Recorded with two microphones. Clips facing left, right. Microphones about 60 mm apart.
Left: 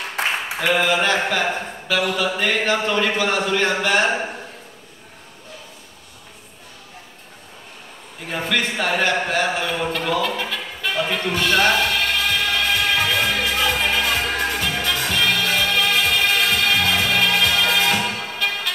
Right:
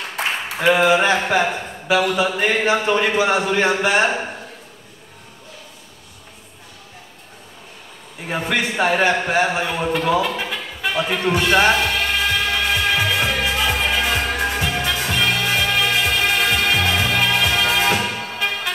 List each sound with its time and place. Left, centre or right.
0.6 s speech: centre
8.3 s speech: centre
9.8 s music: centre
15.1 s music: right
18.0 s music: centre